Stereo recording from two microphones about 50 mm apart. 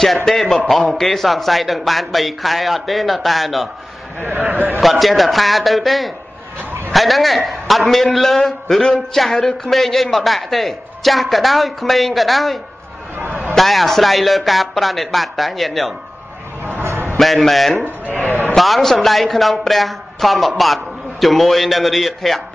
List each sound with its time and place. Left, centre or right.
0.0 s a woman's voice: centre
4.2 s a man's voice: right
4.7 s a woman's voice: centre
13.6 s a woman's voice: centre
17.2 s a woman's voice: centre
18.0 s a sound: left
18.6 s a woman's voice: centre